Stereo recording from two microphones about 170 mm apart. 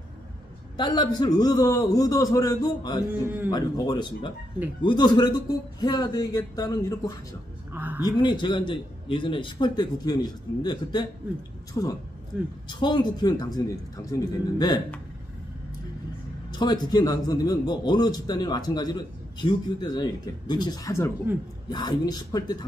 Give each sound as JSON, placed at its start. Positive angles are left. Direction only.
{"t": 0.7, "sound": "a man's voice", "side_deg": 25}
{"t": 3.1, "sound": "speech", "side_deg": -10}
{"t": 3.4, "sound": "a man's voice", "side_deg": 25}
{"t": 8.0, "sound": "a man's voice", "side_deg": 25}
{"t": 12.3, "sound": "speech", "side_deg": -5}
{"t": 12.6, "sound": "a man's voice", "side_deg": 25}
{"t": 16.4, "sound": "a man's voice", "side_deg": 25}